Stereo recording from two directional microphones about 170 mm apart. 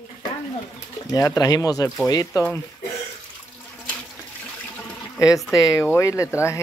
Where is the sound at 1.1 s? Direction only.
20° left (ahead or behind).